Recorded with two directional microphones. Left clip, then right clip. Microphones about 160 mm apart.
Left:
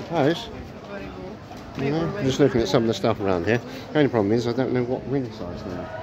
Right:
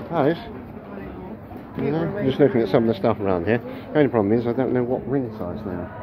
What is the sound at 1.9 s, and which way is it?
Speech, 20° left (ahead or behind).